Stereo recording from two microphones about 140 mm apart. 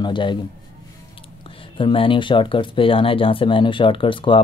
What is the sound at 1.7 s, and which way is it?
Speech, 40° left (ahead or behind).